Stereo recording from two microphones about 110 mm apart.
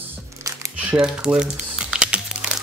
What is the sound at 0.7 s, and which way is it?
Typing, 5° right (ahead or behind).